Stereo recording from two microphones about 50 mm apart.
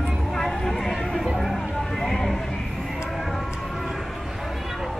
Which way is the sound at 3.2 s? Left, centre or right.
Centre.